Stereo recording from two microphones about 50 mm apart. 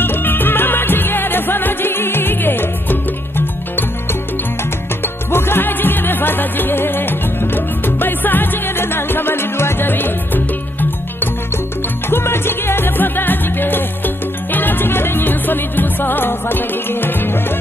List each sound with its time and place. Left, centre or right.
0.0 s music: left
12.1 s music: left